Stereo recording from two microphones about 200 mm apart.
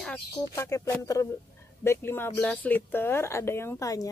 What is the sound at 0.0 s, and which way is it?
Speech, 10° left (ahead or behind).